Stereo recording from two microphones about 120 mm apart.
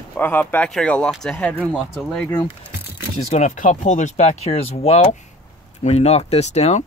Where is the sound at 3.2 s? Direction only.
75° left (ahead or behind).